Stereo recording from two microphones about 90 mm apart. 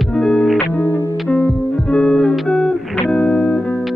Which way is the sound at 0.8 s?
30° left (ahead or behind).